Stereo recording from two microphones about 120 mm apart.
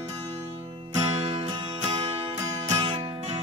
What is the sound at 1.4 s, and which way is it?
Music, 45° right (ahead or behind).